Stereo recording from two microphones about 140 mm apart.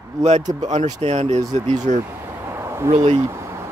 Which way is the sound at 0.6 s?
55° right (ahead or behind).